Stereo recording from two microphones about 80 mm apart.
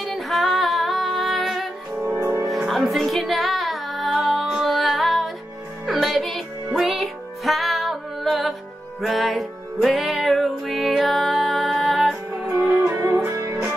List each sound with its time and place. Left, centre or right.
0.0 s music: centre
12.5 s music: right